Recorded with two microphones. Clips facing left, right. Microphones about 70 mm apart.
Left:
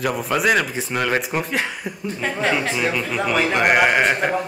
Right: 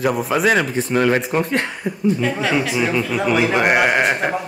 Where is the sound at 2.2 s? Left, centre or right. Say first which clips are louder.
Right 2 dB; left.